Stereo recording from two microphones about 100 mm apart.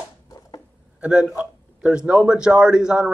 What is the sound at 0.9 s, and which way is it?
Speech, 10° right (ahead or behind).